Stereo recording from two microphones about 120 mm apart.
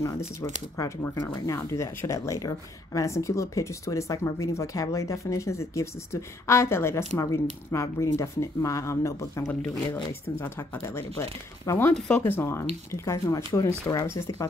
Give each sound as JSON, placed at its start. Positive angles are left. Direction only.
{"t": 0.7, "sound": "speech", "side_deg": 25}